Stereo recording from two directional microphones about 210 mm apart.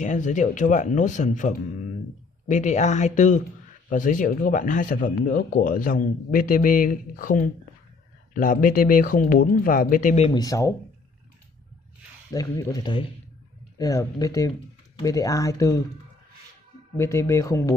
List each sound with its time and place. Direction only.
0.0 s speech: 35° left (ahead or behind)
10.4 s speech: 15° left (ahead or behind)
12.3 s speech: 15° left (ahead or behind)
16.9 s speech: 15° left (ahead or behind)